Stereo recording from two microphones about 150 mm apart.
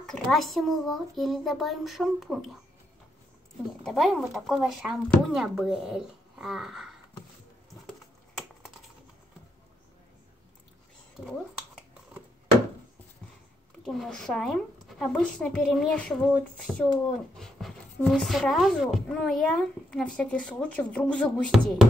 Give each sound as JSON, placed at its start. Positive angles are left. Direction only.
{"t": 0.0, "sound": "speech", "side_deg": 0}
{"t": 3.8, "sound": "speech", "side_deg": 0}
{"t": 13.8, "sound": "speech", "side_deg": 0}